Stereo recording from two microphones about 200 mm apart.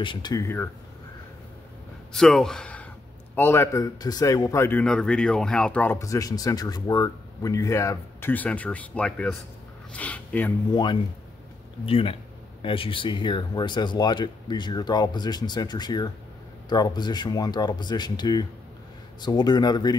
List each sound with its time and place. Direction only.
0.0 s speech: 20° left (ahead or behind)
2.1 s a man's voice: centre (ahead or behind)
10.7 s speech: 20° left (ahead or behind)